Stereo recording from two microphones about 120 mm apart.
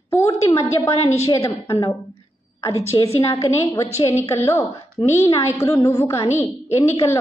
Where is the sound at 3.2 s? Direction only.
25° left (ahead or behind).